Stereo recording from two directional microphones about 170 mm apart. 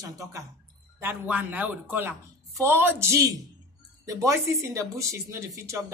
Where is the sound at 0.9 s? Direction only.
10° right (ahead or behind).